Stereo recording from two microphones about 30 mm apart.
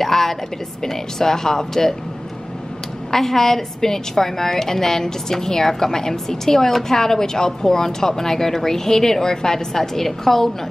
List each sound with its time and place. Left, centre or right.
0.0 s a woman's voice: centre
3.1 s a woman's voice: centre